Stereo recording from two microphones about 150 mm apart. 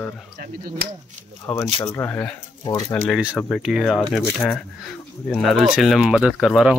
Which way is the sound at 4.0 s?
5° left (ahead or behind).